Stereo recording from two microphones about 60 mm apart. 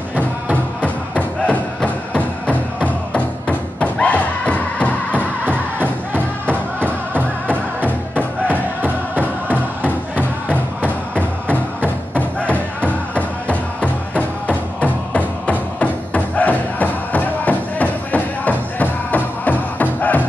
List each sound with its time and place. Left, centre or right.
0.7 s music: left
7.2 s music: right
11.1 s music: left